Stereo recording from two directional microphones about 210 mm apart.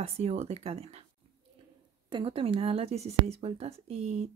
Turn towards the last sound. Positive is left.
turn(degrees=-30)  # may be behind; listen again after turning